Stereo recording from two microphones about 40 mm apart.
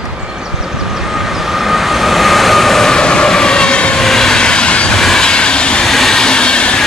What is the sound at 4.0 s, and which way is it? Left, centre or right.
Vehicle, centre.